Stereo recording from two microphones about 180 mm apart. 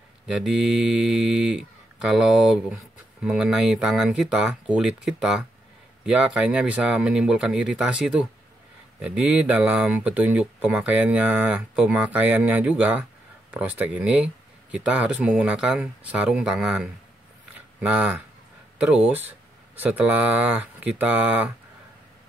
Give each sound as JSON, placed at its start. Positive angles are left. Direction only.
{"t": 0.3, "sound": "speech", "side_deg": -5}
{"t": 17.6, "sound": "a sound", "side_deg": -10}
{"t": 18.8, "sound": "speech", "side_deg": -5}